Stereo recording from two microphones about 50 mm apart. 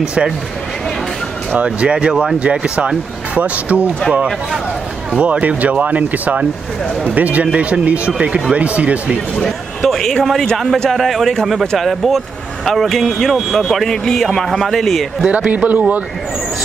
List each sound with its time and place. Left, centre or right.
0.0 s speech: centre
1.6 s speech: right
3.3 s speech: right
5.1 s speech: right
7.4 s speech: centre
9.4 s speech: centre
15.3 s a man's voice: right